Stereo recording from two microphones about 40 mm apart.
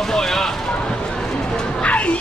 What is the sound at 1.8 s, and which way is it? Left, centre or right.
Music, left.